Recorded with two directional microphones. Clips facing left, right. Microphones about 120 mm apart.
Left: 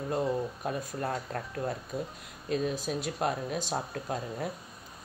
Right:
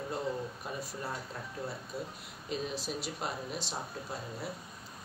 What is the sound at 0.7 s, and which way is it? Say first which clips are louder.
Speech: left 6 dB; 60° left (ahead or behind).